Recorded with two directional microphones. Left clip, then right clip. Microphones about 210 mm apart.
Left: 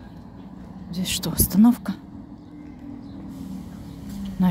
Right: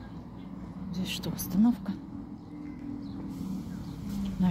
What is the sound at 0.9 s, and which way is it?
Speech, 30° left (ahead or behind).